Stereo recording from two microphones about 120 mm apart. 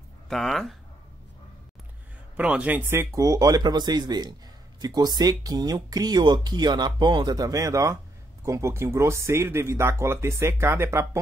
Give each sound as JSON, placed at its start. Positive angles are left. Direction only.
{"t": 0.3, "sound": "speech", "side_deg": 0}
{"t": 2.3, "sound": "speech", "side_deg": -10}